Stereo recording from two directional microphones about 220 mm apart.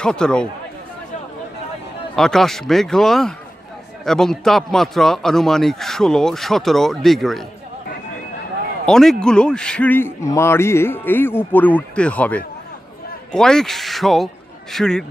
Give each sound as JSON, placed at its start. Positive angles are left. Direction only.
{"t": 0.0, "sound": "a man's voice", "side_deg": 5}
{"t": 2.1, "sound": "a man's voice", "side_deg": 0}
{"t": 8.8, "sound": "a man's voice", "side_deg": 5}